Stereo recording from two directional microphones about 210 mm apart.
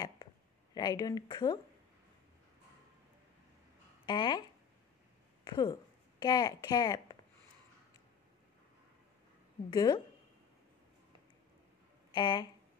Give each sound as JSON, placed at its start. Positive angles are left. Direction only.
{"t": 0.7, "sound": "speech", "side_deg": 20}
{"t": 4.0, "sound": "a woman's voice", "side_deg": 20}
{"t": 9.7, "sound": "speech", "side_deg": 20}
{"t": 12.1, "sound": "speech", "side_deg": 20}